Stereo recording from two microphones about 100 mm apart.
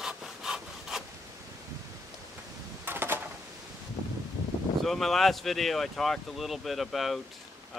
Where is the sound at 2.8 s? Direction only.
20° right (ahead or behind).